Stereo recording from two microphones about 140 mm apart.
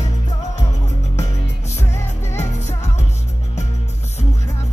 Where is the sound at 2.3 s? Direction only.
55° left (ahead or behind).